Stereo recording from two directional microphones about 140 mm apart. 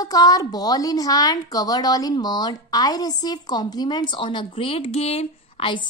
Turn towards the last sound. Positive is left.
turn(degrees=35)  # may be behind; listen again after turning